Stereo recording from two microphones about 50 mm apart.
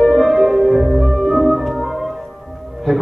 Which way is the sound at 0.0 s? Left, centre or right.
Centre.